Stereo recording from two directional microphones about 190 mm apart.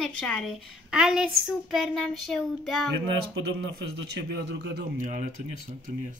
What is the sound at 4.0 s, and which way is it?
Speech, 65° right (ahead or behind).